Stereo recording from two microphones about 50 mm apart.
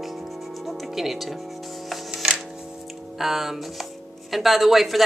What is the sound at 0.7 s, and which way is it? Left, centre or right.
Music, centre.